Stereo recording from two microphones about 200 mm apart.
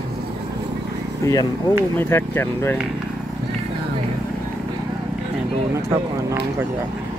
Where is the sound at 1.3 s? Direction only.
20° left (ahead or behind).